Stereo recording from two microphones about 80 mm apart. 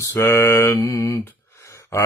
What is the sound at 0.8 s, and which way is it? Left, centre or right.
Mantra, left.